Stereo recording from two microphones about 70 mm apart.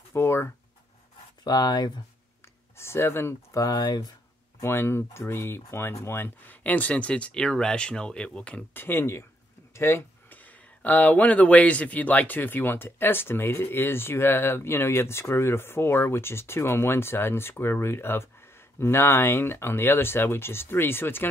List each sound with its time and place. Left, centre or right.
0.1 s a sound: left
1.4 s speech: left
2.7 s speech: left
3.7 s speech: left
4.6 s speech: left; by 8.6 s centre
8.7 s speech: left
10.3 s speech: left